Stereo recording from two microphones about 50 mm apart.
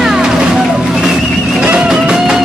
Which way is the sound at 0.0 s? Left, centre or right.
Centre.